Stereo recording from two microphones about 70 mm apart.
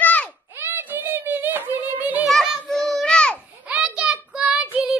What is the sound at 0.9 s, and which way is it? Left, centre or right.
Music, right.